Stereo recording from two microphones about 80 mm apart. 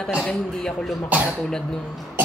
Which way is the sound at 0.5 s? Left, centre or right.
Centre.